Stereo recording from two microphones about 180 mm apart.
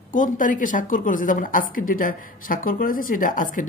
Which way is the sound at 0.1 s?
45° left (ahead or behind).